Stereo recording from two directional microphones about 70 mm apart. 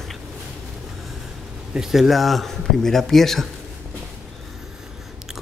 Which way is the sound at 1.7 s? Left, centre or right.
Centre.